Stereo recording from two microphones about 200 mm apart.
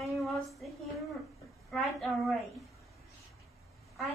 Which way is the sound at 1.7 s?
Centre (ahead or behind).